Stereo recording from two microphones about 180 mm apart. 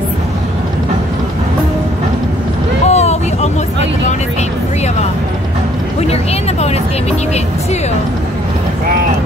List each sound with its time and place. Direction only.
2.9 s boat: 35° left (ahead or behind)
6.6 s vehicle: 35° left (ahead or behind)